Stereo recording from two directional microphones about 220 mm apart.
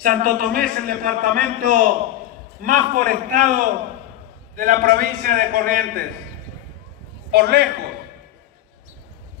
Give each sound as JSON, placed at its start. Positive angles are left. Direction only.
{"t": 0.0, "sound": "a man's voice", "side_deg": -40}
{"t": 7.2, "sound": "a man's voice", "side_deg": -50}